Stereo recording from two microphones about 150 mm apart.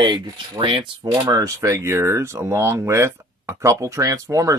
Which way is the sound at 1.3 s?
20° right (ahead or behind).